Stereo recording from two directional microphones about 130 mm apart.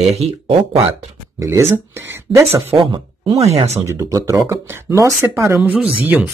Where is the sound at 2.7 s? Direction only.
40° right (ahead or behind).